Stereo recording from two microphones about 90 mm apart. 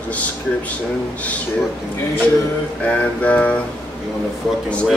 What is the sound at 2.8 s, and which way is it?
Speech, 15° left (ahead or behind).